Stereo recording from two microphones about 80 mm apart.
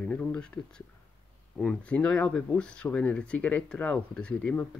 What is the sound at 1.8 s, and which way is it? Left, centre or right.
Speech, centre.